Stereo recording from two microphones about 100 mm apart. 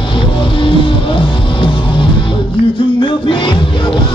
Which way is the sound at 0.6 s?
60° left (ahead or behind).